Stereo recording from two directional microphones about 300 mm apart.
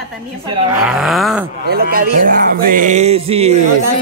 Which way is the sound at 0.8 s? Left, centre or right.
Centre.